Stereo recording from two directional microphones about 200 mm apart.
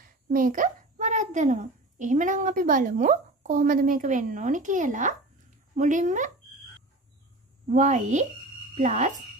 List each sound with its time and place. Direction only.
0.0 s a child's voice: 45° right (ahead or behind)
7.6 s a woman's voice: 40° right (ahead or behind)